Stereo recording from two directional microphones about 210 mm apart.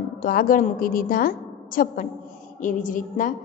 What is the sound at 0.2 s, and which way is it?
A woman's voice, 40° left (ahead or behind).